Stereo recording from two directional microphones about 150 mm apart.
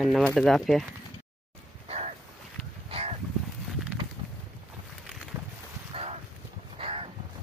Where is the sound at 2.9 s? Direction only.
45° right (ahead or behind).